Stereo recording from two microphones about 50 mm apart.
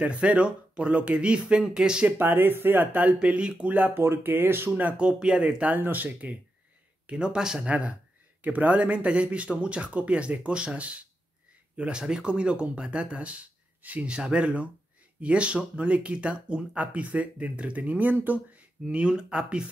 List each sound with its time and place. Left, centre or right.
0.0 s speech: right
2.1 s speech: right
3.9 s speech: right
4.6 s speech: right
5.8 s speech: right
7.1 s speech: centre
8.5 s speech: right
18.9 s speech: right